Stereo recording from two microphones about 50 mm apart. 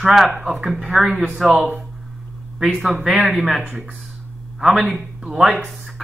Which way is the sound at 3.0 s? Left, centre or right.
Right.